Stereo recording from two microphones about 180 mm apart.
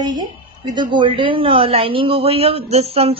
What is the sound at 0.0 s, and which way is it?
A woman's voice, 20° right (ahead or behind).